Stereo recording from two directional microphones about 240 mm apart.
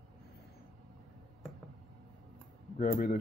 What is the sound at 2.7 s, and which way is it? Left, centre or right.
Speech, left.